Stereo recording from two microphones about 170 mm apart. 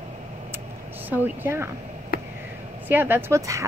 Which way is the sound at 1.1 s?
15° right (ahead or behind).